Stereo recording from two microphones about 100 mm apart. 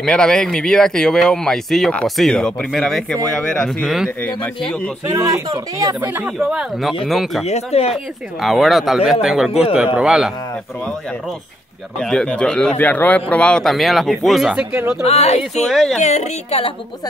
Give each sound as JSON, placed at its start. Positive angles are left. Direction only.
{"t": 0.0, "sound": "speech", "side_deg": 5}
{"t": 4.2, "sound": "speech", "side_deg": 15}
{"t": 5.0, "sound": "speech", "side_deg": -30}
{"t": 5.9, "sound": "speech", "side_deg": -20}
{"t": 6.3, "sound": "speech", "side_deg": 0}
{"t": 7.4, "sound": "speech", "side_deg": 90}
{"t": 8.4, "sound": "speech", "side_deg": 0}
{"t": 12.0, "sound": "speech", "side_deg": 5}
{"t": 15.0, "sound": "speech", "side_deg": 90}
{"t": 15.7, "sound": "speech", "side_deg": 5}
{"t": 16.4, "sound": "speech", "side_deg": 90}